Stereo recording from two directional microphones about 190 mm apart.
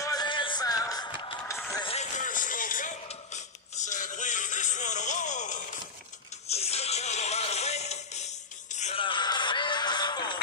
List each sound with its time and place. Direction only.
0.0 s music: 20° left (ahead or behind)
2.0 s a sound: 40° left (ahead or behind)
6.5 s music: 35° left (ahead or behind)
9.0 s music: 25° left (ahead or behind)